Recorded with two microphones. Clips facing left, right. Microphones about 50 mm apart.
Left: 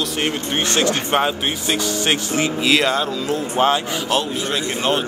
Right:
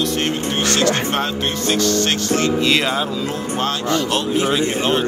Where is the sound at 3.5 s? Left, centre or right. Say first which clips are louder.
Left 2 dB; centre.